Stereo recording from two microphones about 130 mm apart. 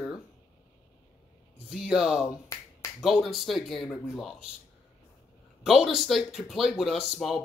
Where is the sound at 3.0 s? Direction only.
Centre (ahead or behind).